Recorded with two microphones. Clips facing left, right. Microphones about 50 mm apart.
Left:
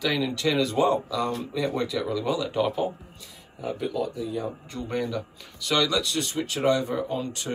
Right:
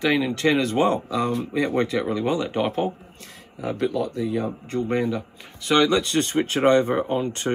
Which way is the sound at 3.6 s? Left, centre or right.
Right.